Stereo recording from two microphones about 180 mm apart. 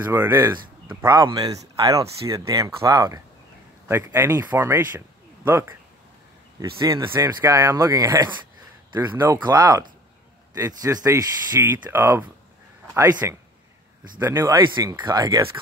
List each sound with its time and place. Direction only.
0.0 s speech: 15° right (ahead or behind)
0.8 s speech: 25° right (ahead or behind)
6.8 s speech: 20° right (ahead or behind)